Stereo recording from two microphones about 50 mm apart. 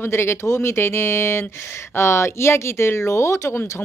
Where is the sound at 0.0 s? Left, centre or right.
Left.